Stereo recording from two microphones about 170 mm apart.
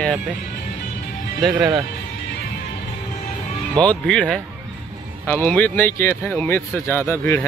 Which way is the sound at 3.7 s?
5° left (ahead or behind).